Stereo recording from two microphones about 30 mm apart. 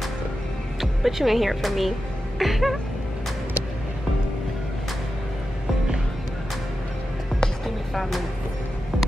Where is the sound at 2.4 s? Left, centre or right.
Centre.